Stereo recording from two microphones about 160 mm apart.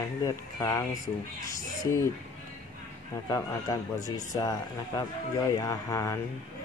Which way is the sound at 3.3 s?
20° left (ahead or behind).